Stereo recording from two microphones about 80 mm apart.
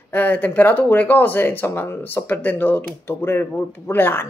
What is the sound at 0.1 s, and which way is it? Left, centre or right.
Speech, left.